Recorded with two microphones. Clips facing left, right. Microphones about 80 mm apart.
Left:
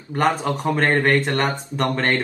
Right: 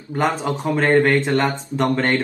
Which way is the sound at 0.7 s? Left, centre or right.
Centre.